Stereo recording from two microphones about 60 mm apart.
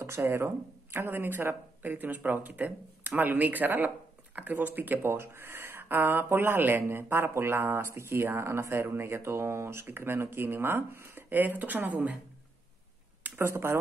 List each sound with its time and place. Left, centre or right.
0.0 s speech: right
13.2 s speech: right